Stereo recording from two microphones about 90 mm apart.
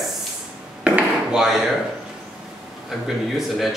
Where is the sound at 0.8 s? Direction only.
15° right (ahead or behind).